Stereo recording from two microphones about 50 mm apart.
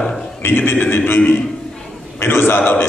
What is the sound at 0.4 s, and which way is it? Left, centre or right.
A man's voice, left.